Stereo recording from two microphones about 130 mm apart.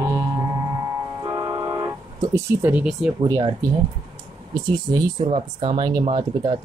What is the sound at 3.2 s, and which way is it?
Speech, 30° right (ahead or behind).